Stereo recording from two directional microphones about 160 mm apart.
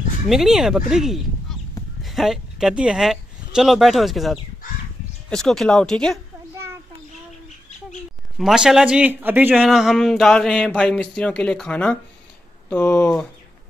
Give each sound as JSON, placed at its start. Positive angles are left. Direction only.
{"t": 0.3, "sound": "speech", "side_deg": 0}
{"t": 6.5, "sound": "a sound", "side_deg": -15}
{"t": 8.4, "sound": "speech", "side_deg": 0}